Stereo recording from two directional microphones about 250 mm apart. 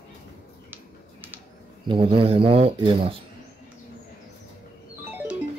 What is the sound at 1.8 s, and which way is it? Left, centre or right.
Speech, right.